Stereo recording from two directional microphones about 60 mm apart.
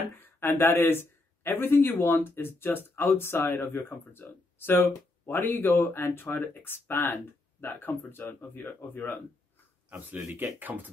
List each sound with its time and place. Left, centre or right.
0.1 s speech: left
9.8 s speech: right